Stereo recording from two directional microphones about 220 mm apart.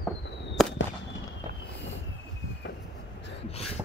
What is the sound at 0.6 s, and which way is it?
Fireworks, centre (ahead or behind).